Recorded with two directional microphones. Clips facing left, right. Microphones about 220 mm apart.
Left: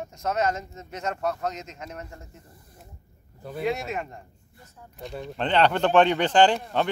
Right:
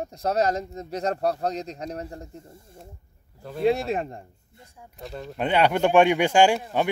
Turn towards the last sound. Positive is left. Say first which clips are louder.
# right 1 dB
turn(degrees=-10)  # may be behind; listen again after turning